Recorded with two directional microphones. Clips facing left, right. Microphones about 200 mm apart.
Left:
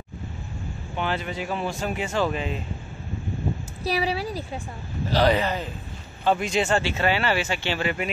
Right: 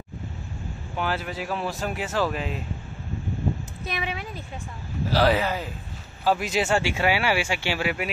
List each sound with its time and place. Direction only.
0.9 s speech: 5° right (ahead or behind)
3.8 s a woman's voice: 35° left (ahead or behind)
5.1 s speech: 5° right (ahead or behind)